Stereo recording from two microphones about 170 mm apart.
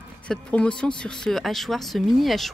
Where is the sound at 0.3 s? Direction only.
5° left (ahead or behind).